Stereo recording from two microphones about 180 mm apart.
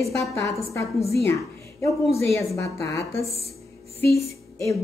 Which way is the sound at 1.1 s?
15° left (ahead or behind).